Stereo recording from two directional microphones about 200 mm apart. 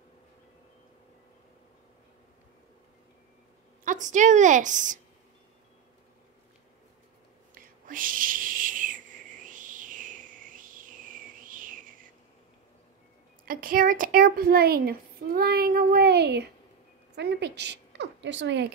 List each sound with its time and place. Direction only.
3.8 s a woman's voice: 40° right (ahead or behind)
7.5 s whispering: 45° right (ahead or behind)
13.5 s a woman's voice: 45° right (ahead or behind); by 18.7 s 65° right (ahead or behind)